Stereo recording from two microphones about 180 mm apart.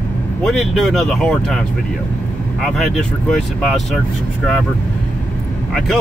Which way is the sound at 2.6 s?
5° left (ahead or behind).